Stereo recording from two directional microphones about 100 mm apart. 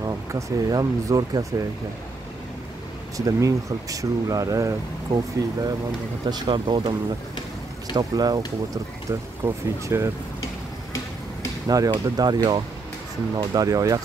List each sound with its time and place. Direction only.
0.0 s speech: 40° right (ahead or behind)
3.2 s speech: 35° right (ahead or behind)
6.2 s speech: 50° right (ahead or behind)
7.9 s speech: 40° right (ahead or behind)
9.4 s speech: 25° right (ahead or behind)
11.6 s speech: 40° right (ahead or behind)